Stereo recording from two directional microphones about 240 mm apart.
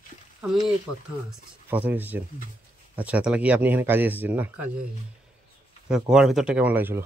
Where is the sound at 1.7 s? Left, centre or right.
Centre.